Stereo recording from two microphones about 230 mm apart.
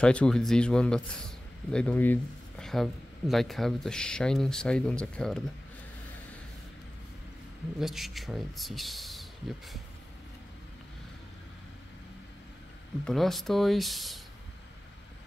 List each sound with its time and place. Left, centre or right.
0.0 s speech: centre
7.8 s speech: centre
13.0 s speech: centre